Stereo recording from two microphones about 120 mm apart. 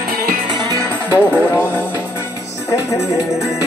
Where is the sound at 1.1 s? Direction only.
15° left (ahead or behind).